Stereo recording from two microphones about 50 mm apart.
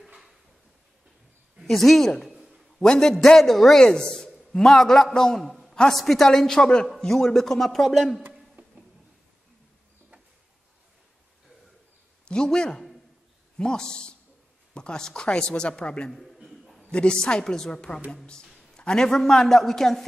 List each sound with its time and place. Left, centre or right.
0.0 s drawer open or close: centre
1.6 s a woman's voice: centre
3.8 s speech: centre
5.5 s a sound: centre
5.9 s speech: centre
12.3 s speech: centre
16.1 s a sound: centre
16.9 s speech: centre